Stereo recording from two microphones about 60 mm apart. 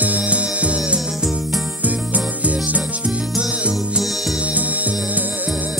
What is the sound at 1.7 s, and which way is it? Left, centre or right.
Music, right.